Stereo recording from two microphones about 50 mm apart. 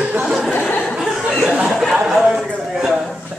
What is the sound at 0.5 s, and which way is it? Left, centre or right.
Chuckle, left.